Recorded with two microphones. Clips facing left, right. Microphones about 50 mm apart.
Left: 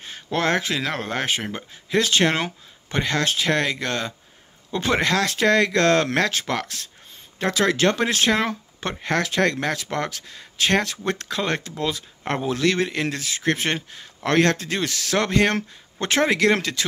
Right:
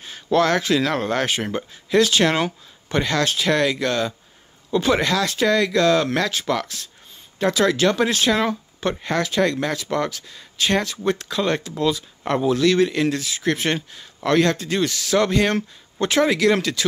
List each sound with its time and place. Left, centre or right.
0.0 s speech: left; by 1.6 s centre
1.9 s speech: left
11.7 s speech: left